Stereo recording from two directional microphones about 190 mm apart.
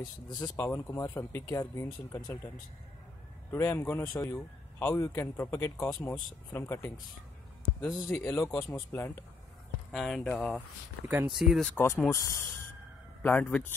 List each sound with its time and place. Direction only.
0.3 s a man's voice: 15° left (ahead or behind)
3.5 s a man's voice: 10° left (ahead or behind)
7.8 s speech: centre (ahead or behind)
8.2 s a man's voice: 15° left (ahead or behind)
11.7 s a man's voice: 15° left (ahead or behind)